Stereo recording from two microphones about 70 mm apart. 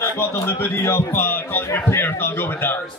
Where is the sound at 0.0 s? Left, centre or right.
Left.